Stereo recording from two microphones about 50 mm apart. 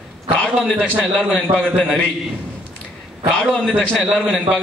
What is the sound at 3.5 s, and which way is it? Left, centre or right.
Speech, centre.